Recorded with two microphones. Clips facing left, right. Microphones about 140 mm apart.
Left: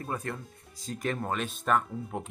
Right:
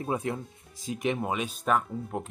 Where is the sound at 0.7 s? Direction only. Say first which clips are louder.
Right 3 dB; centre (ahead or behind).